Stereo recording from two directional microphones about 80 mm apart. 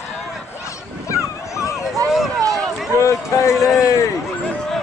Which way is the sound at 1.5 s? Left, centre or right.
Left.